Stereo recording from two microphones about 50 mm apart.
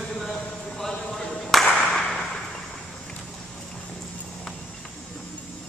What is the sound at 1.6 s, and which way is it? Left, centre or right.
Clapping, left.